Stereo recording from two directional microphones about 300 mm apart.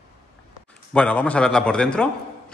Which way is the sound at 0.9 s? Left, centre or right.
Centre.